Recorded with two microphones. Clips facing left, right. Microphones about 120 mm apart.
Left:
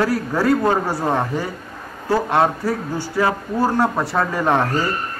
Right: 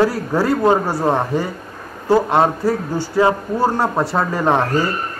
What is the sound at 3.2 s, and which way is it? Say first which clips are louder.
Speech: right 3 dB; 25° right (ahead or behind).